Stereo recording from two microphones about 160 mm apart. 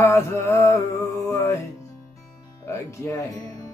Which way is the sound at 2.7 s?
20° left (ahead or behind).